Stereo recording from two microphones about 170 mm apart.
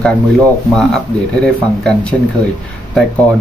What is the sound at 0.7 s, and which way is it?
Speech, 5° left (ahead or behind).